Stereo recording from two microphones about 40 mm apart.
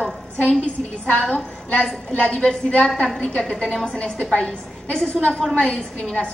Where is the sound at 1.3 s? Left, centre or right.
Left.